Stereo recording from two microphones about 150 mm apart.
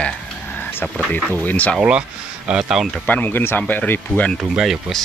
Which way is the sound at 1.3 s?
10° left (ahead or behind).